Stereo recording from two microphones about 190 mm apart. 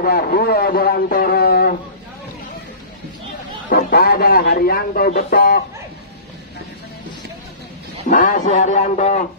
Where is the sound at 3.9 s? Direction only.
55° left (ahead or behind).